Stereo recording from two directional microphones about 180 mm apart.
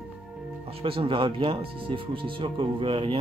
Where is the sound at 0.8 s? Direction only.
30° right (ahead or behind).